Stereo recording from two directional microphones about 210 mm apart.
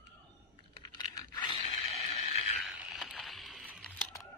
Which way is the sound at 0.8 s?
20° left (ahead or behind).